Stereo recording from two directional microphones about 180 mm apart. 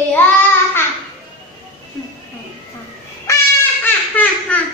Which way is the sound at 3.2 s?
15° left (ahead or behind).